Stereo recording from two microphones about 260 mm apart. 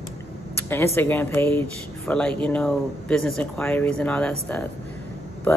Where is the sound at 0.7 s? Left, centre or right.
Centre.